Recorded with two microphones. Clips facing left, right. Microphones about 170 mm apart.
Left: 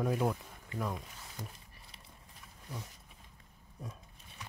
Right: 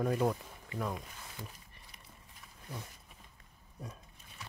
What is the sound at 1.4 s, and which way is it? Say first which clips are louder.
Speech: left 2 dB; 45° left (ahead or behind).